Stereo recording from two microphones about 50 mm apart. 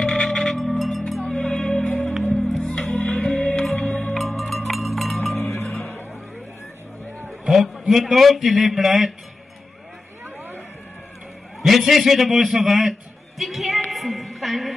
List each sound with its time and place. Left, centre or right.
0.0 s music: centre
1.3 s music: centre
4.1 s music: centre
5.3 s cowbell: left
5.7 s music: left
7.2 s a sound: centre
7.9 s a man's voice: centre
11.6 s a man's voice: centre
13.4 s a sound: centre